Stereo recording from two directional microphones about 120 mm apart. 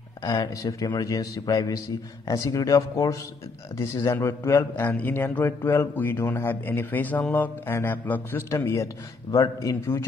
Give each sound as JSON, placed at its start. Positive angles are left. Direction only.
{"t": 0.2, "sound": "a man's voice", "side_deg": 30}